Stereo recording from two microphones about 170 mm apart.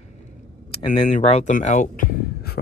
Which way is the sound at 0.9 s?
45° left (ahead or behind).